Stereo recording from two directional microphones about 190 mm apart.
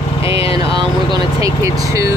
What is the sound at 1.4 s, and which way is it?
Speech, 15° right (ahead or behind).